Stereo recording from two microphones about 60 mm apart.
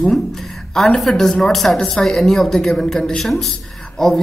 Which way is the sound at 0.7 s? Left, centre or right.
Centre.